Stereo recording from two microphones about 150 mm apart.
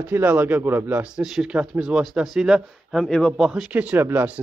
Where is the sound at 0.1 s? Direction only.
15° right (ahead or behind).